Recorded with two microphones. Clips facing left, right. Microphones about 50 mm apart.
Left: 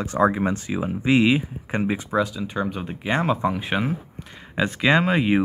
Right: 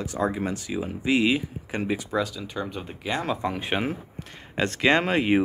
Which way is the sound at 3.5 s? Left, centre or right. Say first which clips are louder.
Left 3 dB; centre.